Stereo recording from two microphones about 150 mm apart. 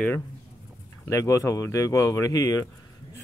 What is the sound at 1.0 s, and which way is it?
Speech, 20° left (ahead or behind).